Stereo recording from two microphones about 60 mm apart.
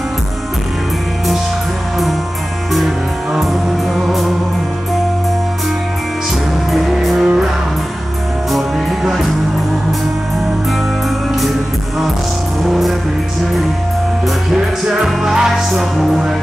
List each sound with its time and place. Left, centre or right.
3.3 s music: centre
6.7 s music: centre
8.5 s music: centre
12.6 s music: centre
14.5 s music: centre